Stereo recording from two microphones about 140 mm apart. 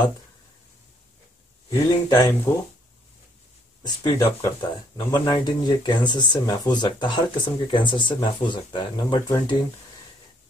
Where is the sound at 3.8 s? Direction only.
25° left (ahead or behind).